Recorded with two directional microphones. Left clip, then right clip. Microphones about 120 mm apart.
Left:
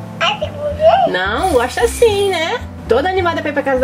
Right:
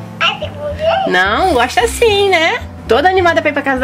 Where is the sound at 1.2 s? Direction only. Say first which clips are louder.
Right 3 dB; 40° right (ahead or behind).